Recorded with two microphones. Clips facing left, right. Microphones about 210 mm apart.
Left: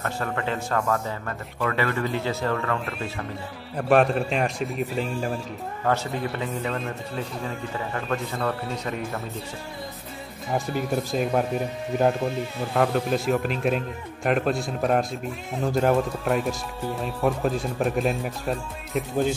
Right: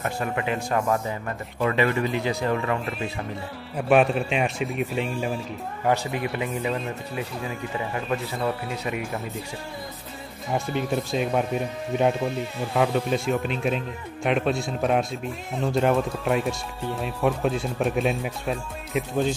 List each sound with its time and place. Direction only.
0.0 s speech: 15° right (ahead or behind)
3.7 s speech: 5° right (ahead or behind)
5.9 s speech: 15° right (ahead or behind)
10.5 s speech: centre (ahead or behind)